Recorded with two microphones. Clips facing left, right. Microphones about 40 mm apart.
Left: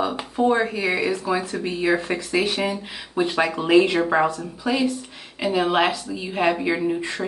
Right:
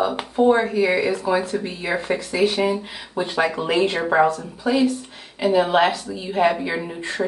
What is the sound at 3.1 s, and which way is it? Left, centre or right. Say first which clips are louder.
Speech: even; centre.